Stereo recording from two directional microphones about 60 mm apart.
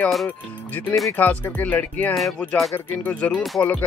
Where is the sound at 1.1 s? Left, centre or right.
Left.